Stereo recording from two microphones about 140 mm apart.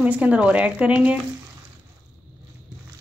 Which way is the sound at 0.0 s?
10° right (ahead or behind).